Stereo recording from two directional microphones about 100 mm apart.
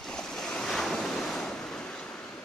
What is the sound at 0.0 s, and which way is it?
Waves, 5° left (ahead or behind).